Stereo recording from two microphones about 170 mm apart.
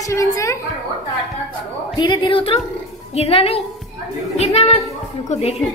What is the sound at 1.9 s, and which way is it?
A woman's voice, 30° left (ahead or behind).